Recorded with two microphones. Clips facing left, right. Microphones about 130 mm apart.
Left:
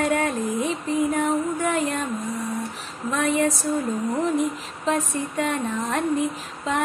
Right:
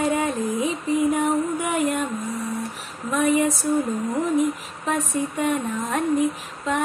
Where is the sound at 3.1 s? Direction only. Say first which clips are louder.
Right 2 dB; 10° right (ahead or behind).